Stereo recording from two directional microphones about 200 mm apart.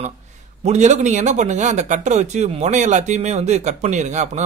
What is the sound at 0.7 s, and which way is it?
A man's voice, 35° right (ahead or behind).